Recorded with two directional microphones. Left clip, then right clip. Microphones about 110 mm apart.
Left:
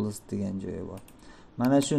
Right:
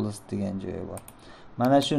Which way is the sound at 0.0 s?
15° left (ahead or behind).